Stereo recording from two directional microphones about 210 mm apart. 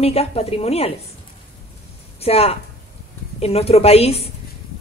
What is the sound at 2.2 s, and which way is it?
A woman's voice, 30° left (ahead or behind).